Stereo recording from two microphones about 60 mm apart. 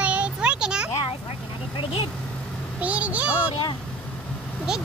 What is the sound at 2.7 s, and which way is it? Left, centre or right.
Vehicle, right.